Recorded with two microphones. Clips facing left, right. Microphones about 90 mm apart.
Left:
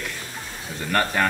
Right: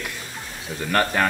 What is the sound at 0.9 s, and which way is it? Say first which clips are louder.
Speech: right 1 dB; centre (ahead or behind).